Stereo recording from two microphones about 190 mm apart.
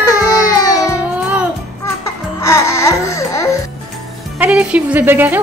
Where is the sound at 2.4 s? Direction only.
15° left (ahead or behind).